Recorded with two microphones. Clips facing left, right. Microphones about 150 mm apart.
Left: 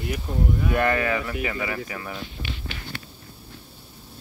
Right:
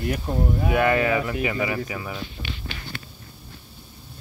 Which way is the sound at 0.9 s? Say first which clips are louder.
Right 3 dB; 20° right (ahead or behind).